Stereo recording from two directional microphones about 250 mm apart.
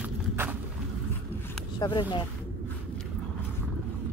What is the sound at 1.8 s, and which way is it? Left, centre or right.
Speech, centre.